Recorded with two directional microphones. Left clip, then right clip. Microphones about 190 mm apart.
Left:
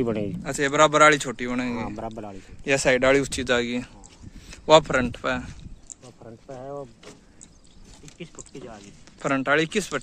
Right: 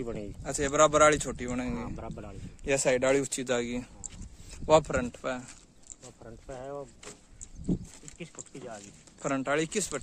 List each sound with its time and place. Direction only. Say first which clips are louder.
0.0 s speech: left 11 dB; 50° left (ahead or behind)
0.4 s speech: left 4 dB; 10° right (ahead or behind)
1.7 s speech: left 7 dB; 45° left (ahead or behind)
2.6 s speech: left 6 dB; 5° right (ahead or behind)
8.2 s speech: left 4 dB; 60° right (ahead or behind)
9.2 s speech: left 7 dB; centre (ahead or behind)